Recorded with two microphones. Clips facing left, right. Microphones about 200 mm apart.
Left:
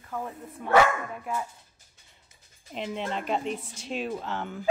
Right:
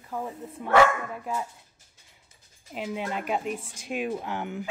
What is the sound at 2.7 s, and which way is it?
Speech, 5° right (ahead or behind).